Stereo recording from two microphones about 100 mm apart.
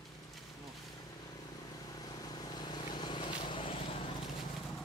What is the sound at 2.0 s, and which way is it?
Vehicle, 40° left (ahead or behind).